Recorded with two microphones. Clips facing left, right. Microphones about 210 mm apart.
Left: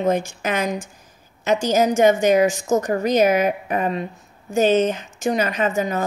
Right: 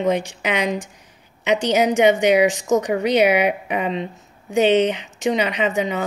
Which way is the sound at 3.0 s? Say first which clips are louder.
Even; 75° right (ahead or behind).